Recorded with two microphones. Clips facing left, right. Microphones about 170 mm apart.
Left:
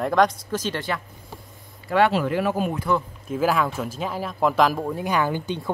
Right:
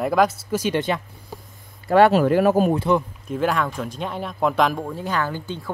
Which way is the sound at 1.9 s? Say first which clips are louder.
Right 5 dB; 45° right (ahead or behind).